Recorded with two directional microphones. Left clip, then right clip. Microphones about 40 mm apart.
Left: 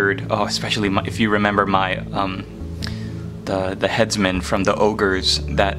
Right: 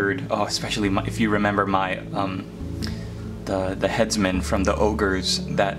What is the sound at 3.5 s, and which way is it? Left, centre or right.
Speech, left.